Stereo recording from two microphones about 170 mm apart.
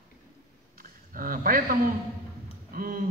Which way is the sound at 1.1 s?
55° right (ahead or behind).